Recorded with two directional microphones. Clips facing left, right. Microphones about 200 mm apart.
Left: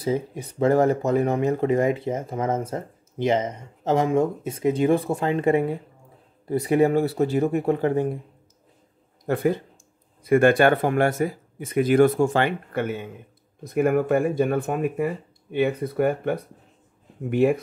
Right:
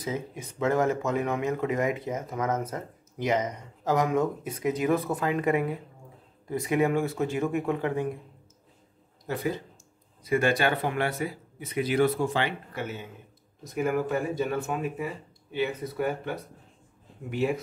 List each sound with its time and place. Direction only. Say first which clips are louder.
0.0 s speech: left 7 dB; 35° left (ahead or behind)
9.2 s speech: left 8 dB; 55° left (ahead or behind)